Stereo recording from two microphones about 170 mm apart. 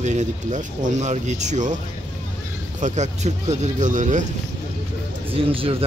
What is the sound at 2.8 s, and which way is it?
Speech, 45° right (ahead or behind).